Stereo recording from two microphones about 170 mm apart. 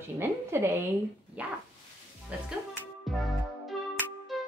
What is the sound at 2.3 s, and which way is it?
Speech, 5° right (ahead or behind).